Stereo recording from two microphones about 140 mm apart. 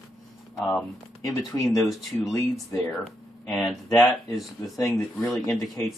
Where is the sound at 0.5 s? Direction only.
5° left (ahead or behind).